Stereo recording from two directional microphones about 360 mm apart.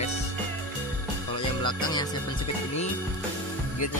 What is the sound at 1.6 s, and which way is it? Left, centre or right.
Speech, centre.